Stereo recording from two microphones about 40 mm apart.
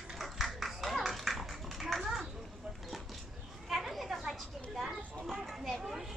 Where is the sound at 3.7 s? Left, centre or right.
Centre.